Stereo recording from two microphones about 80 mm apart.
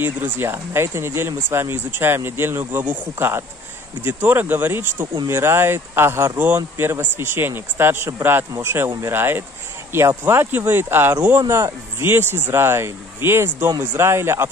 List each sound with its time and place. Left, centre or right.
0.0 s speech: right
6.3 s speech: right
11.4 s speech: right